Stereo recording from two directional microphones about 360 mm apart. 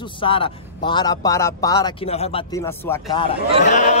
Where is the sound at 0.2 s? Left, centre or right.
Centre.